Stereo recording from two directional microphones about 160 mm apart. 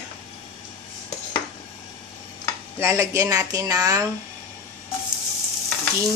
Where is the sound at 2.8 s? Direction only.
20° right (ahead or behind).